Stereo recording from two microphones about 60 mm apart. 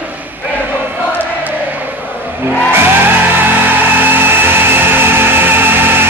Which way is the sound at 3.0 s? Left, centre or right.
Right.